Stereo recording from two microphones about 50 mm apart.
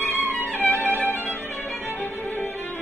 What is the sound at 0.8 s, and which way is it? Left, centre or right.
Music, left.